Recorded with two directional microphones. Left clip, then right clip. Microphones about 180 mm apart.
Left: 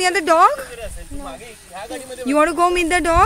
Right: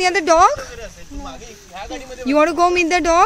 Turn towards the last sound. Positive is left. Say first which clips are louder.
# right 1 dB
turn(degrees=0)  # may be behind; listen again after turning